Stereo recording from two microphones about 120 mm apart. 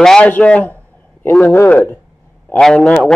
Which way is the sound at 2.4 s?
5° left (ahead or behind).